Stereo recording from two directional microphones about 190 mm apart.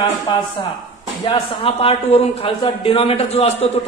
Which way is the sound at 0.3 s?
25° left (ahead or behind).